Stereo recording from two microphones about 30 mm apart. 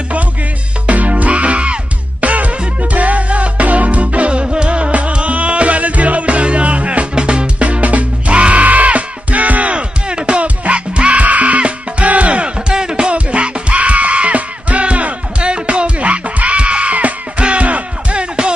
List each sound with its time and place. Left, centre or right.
0.8 s music: right
2.2 s music: right
7.2 s music: right
7.6 s music: right
8.3 s music: right
8.6 s music: right
10.4 s music: right
12.7 s music: right